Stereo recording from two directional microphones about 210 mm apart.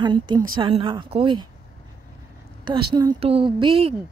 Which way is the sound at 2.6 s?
20° right (ahead or behind).